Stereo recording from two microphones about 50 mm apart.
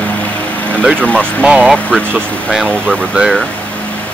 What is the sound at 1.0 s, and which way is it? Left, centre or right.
Speech, left.